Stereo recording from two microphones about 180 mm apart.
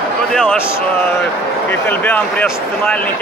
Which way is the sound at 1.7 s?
10° left (ahead or behind).